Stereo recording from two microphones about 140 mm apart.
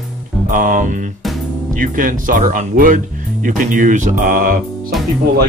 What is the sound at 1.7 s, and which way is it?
Speech, 75° right (ahead or behind).